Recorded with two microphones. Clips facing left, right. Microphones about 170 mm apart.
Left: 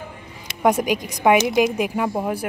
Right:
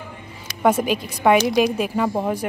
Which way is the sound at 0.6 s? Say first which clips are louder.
Even; 15° left (ahead or behind).